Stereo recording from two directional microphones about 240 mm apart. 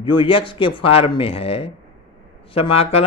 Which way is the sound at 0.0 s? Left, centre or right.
Left.